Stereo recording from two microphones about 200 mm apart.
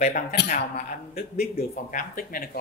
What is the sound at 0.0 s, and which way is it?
Speech, 45° left (ahead or behind).